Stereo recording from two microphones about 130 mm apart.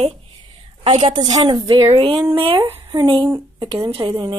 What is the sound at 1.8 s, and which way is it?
Speech, 45° right (ahead or behind).